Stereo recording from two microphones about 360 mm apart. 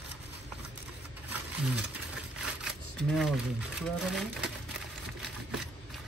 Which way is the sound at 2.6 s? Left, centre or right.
Centre.